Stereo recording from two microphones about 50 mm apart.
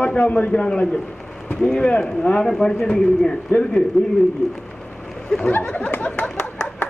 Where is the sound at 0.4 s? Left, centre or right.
Left.